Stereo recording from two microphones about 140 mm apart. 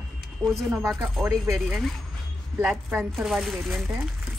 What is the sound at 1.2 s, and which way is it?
Speech, 20° right (ahead or behind).